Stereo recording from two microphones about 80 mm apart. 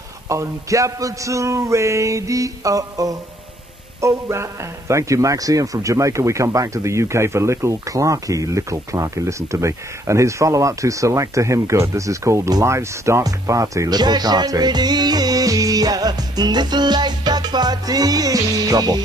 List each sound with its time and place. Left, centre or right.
0.3 s a man's voice: right
13.8 s music: right